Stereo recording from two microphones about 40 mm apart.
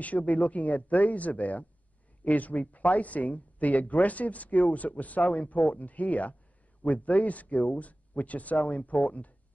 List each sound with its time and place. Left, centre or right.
0.0 s speech: left